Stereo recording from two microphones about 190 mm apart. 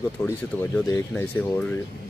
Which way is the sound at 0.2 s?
10° left (ahead or behind).